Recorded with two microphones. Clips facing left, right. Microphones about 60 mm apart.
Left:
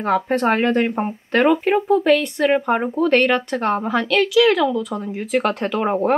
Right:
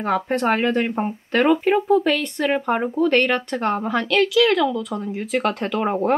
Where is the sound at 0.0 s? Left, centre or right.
Centre.